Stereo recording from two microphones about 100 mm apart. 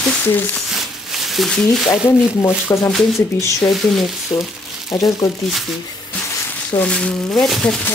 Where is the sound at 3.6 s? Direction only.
Centre (ahead or behind).